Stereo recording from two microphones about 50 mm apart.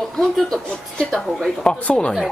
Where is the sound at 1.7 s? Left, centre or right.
Left.